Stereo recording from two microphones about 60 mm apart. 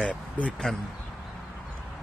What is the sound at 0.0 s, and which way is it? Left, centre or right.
Speech, left.